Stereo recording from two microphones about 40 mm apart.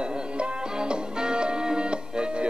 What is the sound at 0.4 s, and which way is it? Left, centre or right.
Music, right.